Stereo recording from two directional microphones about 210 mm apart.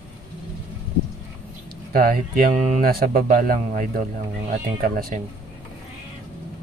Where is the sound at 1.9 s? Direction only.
45° right (ahead or behind).